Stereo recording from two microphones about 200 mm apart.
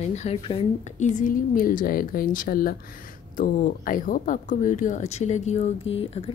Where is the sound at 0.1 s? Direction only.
35° left (ahead or behind).